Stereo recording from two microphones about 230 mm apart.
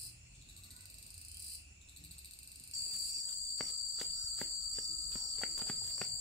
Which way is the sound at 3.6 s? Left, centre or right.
Centre.